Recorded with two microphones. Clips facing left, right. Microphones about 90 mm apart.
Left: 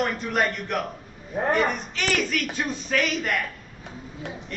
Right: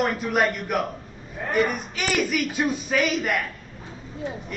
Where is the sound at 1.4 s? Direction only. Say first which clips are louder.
Left 7 dB; 50° left (ahead or behind).